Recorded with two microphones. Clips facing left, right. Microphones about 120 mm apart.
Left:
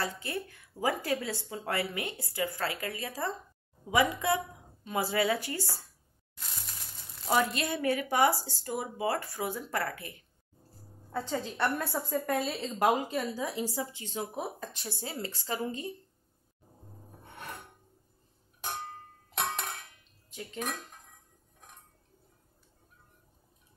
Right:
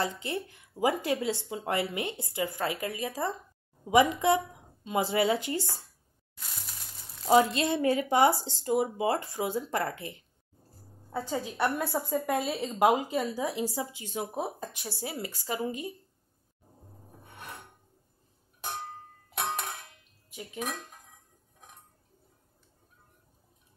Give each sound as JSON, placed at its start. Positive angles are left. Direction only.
{"t": 0.0, "sound": "speech", "side_deg": -20}
{"t": 6.6, "sound": "crushing", "side_deg": 0}
{"t": 7.2, "sound": "speech", "side_deg": -25}
{"t": 11.1, "sound": "a woman's voice", "side_deg": -10}
{"t": 14.2, "sound": "speech", "side_deg": -25}
{"t": 14.6, "sound": "a woman's voice", "side_deg": -15}
{"t": 19.3, "sound": "tick-tock", "side_deg": 0}
{"t": 20.2, "sound": "speech", "side_deg": -10}